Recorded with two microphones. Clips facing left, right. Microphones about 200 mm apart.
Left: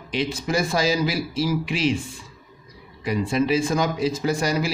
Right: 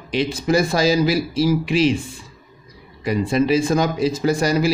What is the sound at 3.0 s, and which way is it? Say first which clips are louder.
A man's voice: right 3 dB; 35° right (ahead or behind).